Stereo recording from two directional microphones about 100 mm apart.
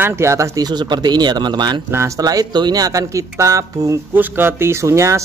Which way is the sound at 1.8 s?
30° right (ahead or behind).